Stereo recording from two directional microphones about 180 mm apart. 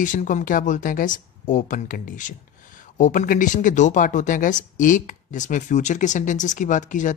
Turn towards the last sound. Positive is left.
turn(degrees=45)  # may be behind; listen again after turning